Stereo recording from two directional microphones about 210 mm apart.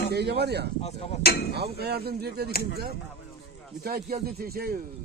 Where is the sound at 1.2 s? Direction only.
50° left (ahead or behind).